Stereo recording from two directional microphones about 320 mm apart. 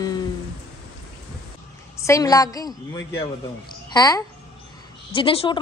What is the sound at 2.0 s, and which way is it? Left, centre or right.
A woman's voice, centre.